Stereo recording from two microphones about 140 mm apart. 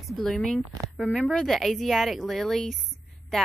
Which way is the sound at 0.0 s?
Centre (ahead or behind).